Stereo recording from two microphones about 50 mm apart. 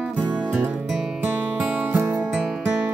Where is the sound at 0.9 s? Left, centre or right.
Centre.